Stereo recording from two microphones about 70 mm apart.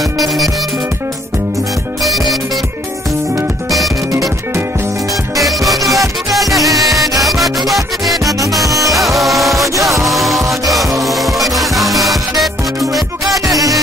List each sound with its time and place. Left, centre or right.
0.2 s music: centre
2.0 s music: centre
5.4 s music: centre
9.6 s music: right
10.0 s music: centre